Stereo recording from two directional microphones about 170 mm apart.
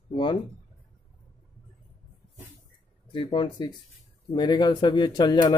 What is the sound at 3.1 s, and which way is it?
Speech, 30° left (ahead or behind).